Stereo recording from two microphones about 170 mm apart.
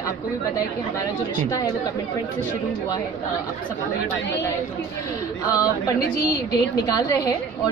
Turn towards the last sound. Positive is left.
turn(degrees=20)  # may be behind; listen again after turning